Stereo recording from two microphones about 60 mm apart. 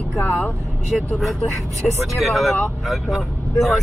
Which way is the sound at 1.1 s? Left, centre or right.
Centre.